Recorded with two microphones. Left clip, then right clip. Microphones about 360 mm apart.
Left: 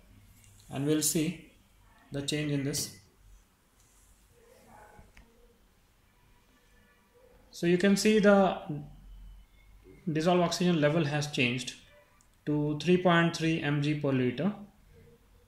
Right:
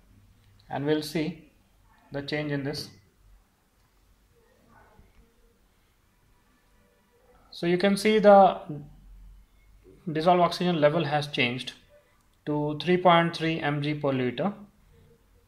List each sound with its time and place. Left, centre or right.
0.7 s speech: right
7.5 s speech: right
10.1 s speech: right